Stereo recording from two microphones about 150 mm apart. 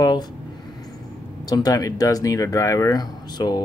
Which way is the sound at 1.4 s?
25° left (ahead or behind).